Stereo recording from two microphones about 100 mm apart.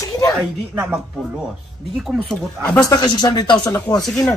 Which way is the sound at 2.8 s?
45° left (ahead or behind).